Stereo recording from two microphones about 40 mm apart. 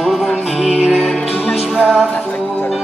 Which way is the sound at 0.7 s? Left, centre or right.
Right.